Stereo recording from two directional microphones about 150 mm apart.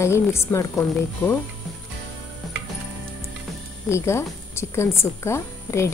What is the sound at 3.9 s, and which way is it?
Speech, 20° left (ahead or behind).